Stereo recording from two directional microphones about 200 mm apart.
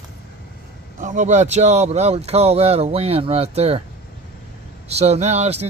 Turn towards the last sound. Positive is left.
turn(degrees=-35)  # may be behind; listen again after turning